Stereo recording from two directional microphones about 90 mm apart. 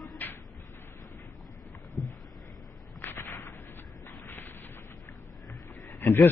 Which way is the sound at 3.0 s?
25° left (ahead or behind).